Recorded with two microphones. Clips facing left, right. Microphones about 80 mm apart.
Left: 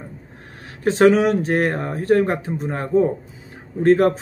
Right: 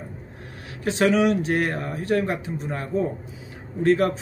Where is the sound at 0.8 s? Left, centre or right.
Left.